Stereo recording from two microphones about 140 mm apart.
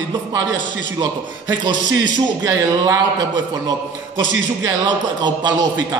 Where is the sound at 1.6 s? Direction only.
30° right (ahead or behind).